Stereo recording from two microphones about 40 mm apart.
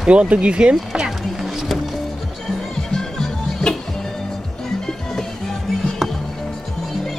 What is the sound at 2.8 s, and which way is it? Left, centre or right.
Music, centre.